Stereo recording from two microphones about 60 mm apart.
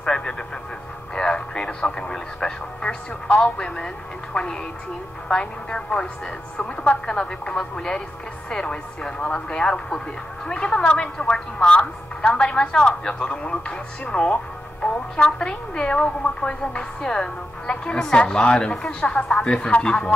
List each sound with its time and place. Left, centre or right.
0.0 s a woman's voice: centre
7.1 s speech: centre